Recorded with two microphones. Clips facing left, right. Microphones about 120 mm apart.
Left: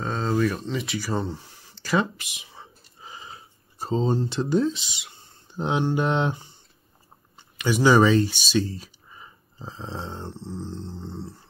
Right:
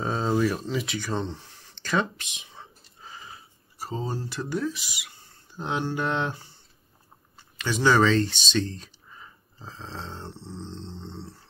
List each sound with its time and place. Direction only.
0.0 s speech: 10° right (ahead or behind)
3.0 s a sound: 20° left (ahead or behind)
7.3 s speech: 15° left (ahead or behind)